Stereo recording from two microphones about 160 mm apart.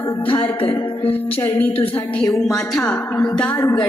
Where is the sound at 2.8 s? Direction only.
10° left (ahead or behind).